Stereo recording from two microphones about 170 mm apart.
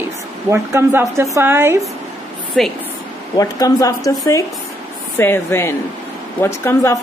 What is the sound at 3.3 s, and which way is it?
A woman's voice, 20° left (ahead or behind).